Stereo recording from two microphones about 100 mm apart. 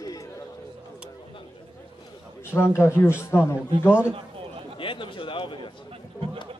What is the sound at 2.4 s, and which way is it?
A man's voice, 25° left (ahead or behind).